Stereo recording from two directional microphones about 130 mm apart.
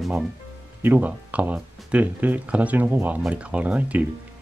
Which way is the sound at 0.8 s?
15° right (ahead or behind).